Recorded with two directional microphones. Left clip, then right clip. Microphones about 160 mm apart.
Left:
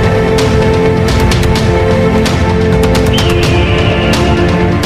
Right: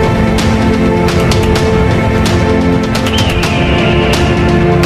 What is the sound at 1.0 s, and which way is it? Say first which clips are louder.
Music: right 1 dB; centre (ahead or behind).